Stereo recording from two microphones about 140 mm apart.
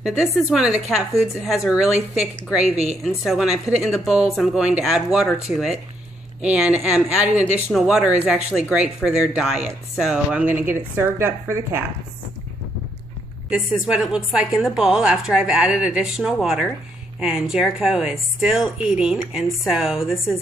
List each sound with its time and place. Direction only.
0.0 s a woman's voice: 5° right (ahead or behind)
13.5 s a woman's voice: 5° right (ahead or behind)